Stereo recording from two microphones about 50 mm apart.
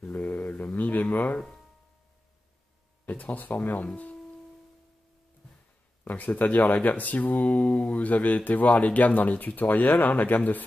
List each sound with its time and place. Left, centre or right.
0.2 s a sound: left
3.1 s speech: left
6.0 s speech: left